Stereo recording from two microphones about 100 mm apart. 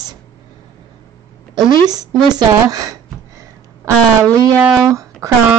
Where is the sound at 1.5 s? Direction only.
40° right (ahead or behind).